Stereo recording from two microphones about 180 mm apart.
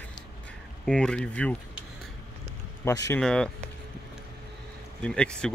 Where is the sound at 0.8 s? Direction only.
5° left (ahead or behind).